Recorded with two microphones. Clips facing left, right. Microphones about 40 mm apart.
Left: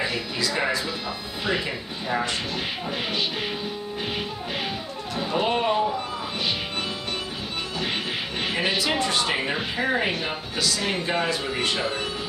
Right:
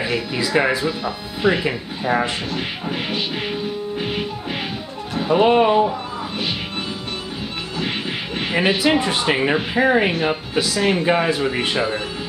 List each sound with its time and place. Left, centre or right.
0.0 s speech: centre
5.3 s speech: right
8.5 s speech: centre